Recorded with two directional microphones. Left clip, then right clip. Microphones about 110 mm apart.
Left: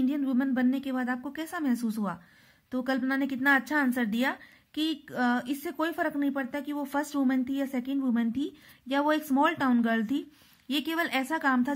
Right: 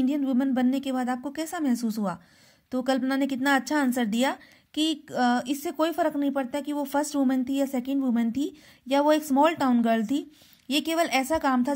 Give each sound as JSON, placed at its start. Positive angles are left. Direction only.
{"t": 0.0, "sound": "a woman's voice", "side_deg": -25}